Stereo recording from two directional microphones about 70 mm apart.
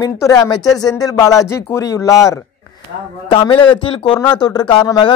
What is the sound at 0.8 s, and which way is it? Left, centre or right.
Speech, left.